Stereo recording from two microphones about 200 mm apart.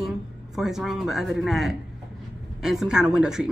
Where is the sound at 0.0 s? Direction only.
Centre (ahead or behind).